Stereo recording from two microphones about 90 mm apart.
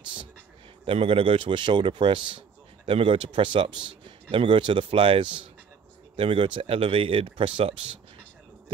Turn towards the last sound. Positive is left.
turn(degrees=-80)